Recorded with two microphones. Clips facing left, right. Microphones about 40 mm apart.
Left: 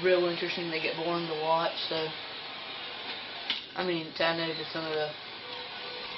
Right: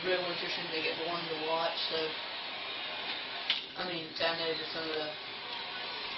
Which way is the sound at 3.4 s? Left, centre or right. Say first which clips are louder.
Left 4 dB; centre.